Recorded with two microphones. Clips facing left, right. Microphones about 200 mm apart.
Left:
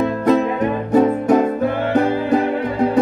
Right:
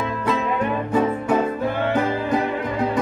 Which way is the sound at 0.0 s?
45° left (ahead or behind).